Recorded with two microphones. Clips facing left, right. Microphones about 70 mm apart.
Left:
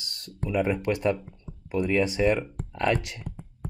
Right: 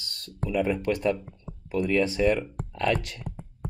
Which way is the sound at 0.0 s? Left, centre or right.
Left.